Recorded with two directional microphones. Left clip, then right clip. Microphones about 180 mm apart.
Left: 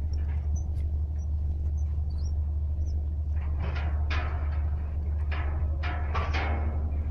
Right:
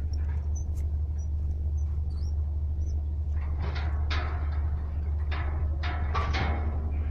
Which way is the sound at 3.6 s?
30° left (ahead or behind).